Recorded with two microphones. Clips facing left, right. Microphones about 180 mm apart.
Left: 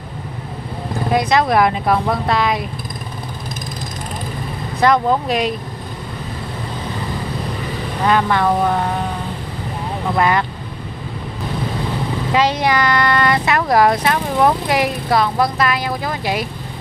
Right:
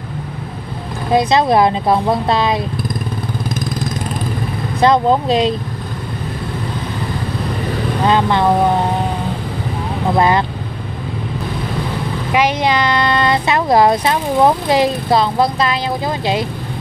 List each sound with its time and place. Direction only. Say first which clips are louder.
1.1 s speech: right 3 dB; 25° right (ahead or behind)
4.8 s speech: right 3 dB; 25° right (ahead or behind)
8.1 s speech: right 1 dB; 25° right (ahead or behind)
10.1 s speech: right 3 dB; 30° right (ahead or behind)
12.3 s speech: right 1 dB; 15° right (ahead or behind)